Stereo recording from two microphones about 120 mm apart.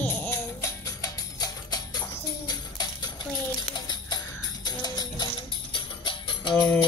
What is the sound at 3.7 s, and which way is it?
Music, 35° left (ahead or behind).